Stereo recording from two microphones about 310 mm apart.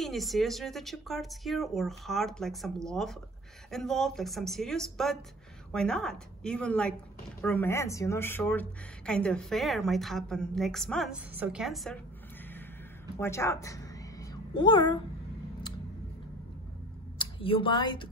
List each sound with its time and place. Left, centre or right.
0.0 s speech: centre
13.2 s a woman's voice: centre
17.2 s speech: centre